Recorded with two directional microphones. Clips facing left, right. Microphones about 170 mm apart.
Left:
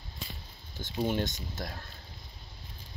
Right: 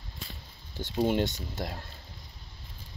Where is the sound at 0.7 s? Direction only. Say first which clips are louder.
Right 4 dB; 30° right (ahead or behind).